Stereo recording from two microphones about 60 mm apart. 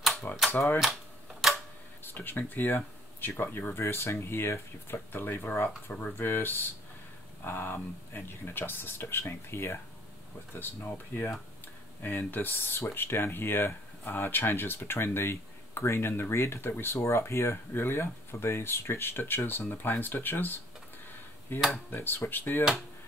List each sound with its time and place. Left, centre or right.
0.5 s speech: left
1.4 s camera: centre
2.0 s speech: left
10.5 s speech: left